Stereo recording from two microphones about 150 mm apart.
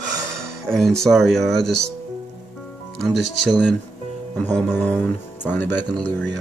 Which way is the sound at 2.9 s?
Centre (ahead or behind).